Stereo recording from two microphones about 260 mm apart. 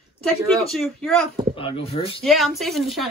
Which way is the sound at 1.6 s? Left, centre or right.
Left.